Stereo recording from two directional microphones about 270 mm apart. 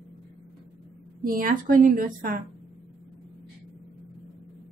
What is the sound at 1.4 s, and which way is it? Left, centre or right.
Speech, right.